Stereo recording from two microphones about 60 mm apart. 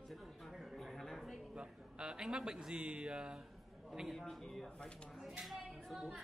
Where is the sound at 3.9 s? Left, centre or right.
Centre.